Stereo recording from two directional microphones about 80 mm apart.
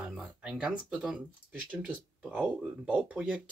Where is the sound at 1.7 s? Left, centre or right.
Centre.